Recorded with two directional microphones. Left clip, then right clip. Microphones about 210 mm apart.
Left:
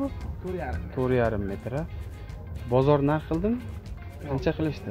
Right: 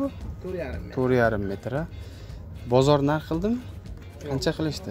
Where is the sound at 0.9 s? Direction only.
20° right (ahead or behind).